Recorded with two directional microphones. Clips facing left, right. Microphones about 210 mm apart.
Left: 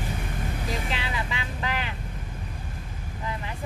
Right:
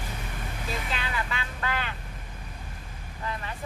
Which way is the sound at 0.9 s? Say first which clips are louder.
Left 1 dB; 15° left (ahead or behind).